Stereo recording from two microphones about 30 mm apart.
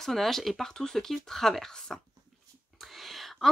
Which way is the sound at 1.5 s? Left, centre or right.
Centre.